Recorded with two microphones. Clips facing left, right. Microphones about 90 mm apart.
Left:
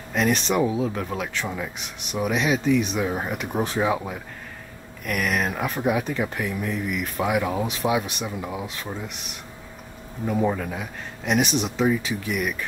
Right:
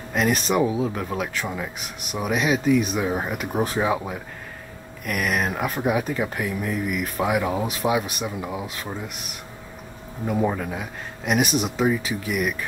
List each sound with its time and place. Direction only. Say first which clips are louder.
0.1 s speech: right 1 dB; 5° right (ahead or behind)
10.2 s speech: even; 5° right (ahead or behind)